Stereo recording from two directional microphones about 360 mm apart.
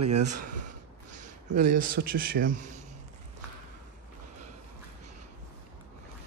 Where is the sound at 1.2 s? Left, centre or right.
Centre.